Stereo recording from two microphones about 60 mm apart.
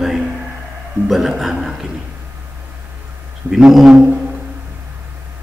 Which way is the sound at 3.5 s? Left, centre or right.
Centre.